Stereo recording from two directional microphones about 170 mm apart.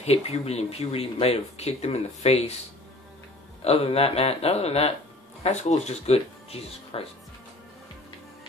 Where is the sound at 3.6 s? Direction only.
35° left (ahead or behind).